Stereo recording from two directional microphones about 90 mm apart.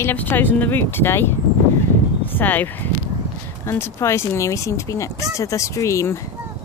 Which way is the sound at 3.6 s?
30° left (ahead or behind).